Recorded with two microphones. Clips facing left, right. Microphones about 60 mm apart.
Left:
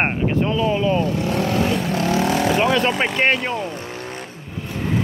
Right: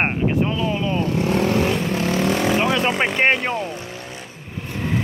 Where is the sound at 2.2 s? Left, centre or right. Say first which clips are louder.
Left 1 dB; centre.